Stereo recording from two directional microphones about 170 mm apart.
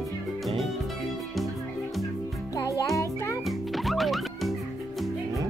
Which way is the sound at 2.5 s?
20° left (ahead or behind).